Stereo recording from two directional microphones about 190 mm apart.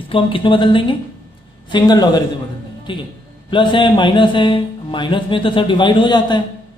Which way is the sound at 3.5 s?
25° left (ahead or behind).